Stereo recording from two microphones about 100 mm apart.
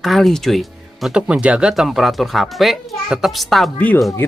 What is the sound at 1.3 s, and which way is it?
Speech, 10° right (ahead or behind).